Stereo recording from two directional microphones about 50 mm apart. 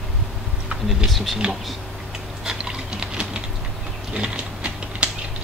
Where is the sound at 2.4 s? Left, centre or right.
Centre.